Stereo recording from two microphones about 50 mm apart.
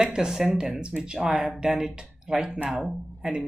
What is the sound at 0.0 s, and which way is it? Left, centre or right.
Speech, centre.